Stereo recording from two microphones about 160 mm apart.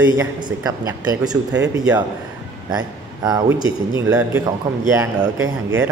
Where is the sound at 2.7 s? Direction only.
25° right (ahead or behind).